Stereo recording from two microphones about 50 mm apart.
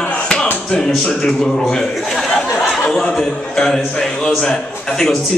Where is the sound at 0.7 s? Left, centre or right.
Centre.